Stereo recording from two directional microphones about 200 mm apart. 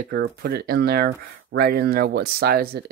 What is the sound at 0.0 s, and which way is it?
Speech, 50° right (ahead or behind).